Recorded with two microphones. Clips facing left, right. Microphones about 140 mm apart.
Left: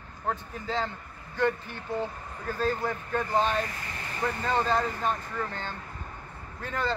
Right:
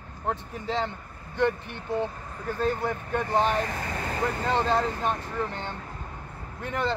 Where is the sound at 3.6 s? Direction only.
80° right.